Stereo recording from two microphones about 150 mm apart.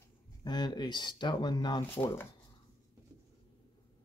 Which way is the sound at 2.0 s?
15° left (ahead or behind).